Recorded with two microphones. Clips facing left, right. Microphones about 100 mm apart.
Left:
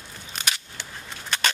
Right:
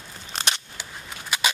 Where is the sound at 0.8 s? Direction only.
10° right (ahead or behind).